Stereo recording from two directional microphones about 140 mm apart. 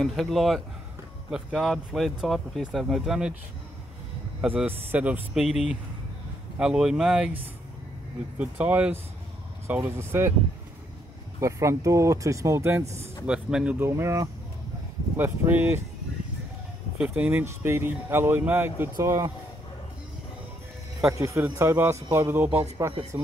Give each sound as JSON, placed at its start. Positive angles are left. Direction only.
{"t": 0.0, "sound": "speech", "side_deg": 0}
{"t": 4.4, "sound": "speech", "side_deg": -10}
{"t": 8.4, "sound": "speech", "side_deg": -10}
{"t": 11.3, "sound": "speech", "side_deg": -20}
{"t": 13.3, "sound": "speech", "side_deg": -5}
{"t": 13.8, "sound": "speech", "side_deg": -20}
{"t": 17.0, "sound": "speech", "side_deg": -10}
{"t": 21.1, "sound": "speech", "side_deg": -20}